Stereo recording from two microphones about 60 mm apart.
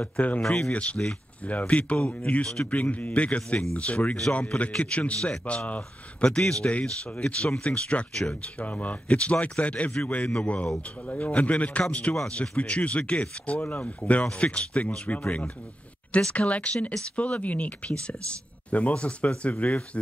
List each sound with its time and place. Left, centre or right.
0.4 s speech: centre
0.7 s speech: left
2.7 s speech: left
16.1 s speech: centre
16.3 s speech: left